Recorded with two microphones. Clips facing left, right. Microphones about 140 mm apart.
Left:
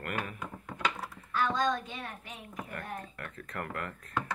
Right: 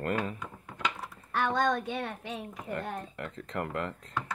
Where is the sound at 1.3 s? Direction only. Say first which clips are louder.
Right 2 dB; 65° right (ahead or behind); by 2.5 s 85° right.